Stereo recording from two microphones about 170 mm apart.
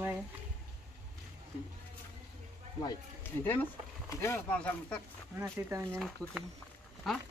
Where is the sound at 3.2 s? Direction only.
10° left (ahead or behind).